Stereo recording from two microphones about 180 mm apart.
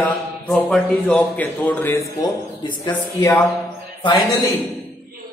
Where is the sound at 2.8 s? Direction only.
25° left (ahead or behind).